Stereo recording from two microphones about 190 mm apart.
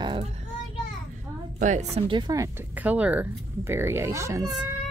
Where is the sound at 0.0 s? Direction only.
25° right (ahead or behind).